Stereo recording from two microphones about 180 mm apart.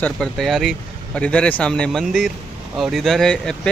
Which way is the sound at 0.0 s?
Centre (ahead or behind).